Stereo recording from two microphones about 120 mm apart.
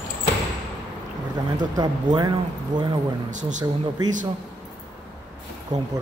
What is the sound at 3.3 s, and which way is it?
Speech, 90° right.